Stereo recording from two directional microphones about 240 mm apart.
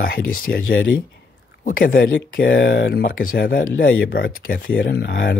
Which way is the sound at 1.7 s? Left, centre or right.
Left.